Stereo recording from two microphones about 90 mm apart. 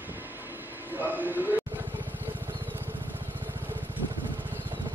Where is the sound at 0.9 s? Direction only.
20° right (ahead or behind).